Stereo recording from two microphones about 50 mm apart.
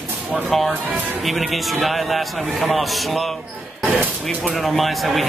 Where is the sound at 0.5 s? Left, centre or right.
Centre.